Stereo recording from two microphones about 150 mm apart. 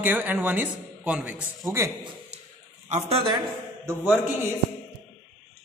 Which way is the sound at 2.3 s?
45° right (ahead or behind).